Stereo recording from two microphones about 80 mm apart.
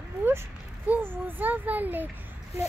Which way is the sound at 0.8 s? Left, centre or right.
Right.